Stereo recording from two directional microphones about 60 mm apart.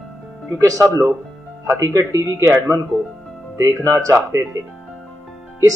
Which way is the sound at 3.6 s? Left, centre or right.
Right.